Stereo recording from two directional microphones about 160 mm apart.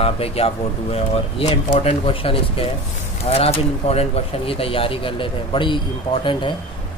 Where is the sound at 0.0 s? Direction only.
35° left (ahead or behind).